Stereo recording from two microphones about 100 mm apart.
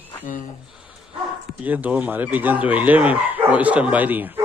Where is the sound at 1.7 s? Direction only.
15° right (ahead or behind).